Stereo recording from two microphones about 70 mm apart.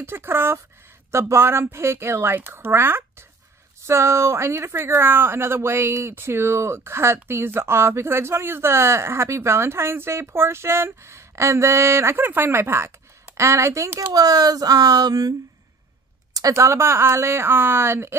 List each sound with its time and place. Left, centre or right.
0.0 s speech: right
14.1 s speech: right
16.3 s speech: right